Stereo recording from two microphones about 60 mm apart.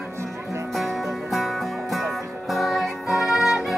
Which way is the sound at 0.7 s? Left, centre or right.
Centre.